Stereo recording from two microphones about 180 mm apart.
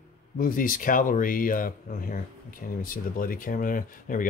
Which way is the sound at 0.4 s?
50° left (ahead or behind).